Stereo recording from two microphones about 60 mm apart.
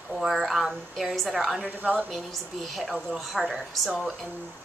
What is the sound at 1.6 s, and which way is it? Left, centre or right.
Speech, right.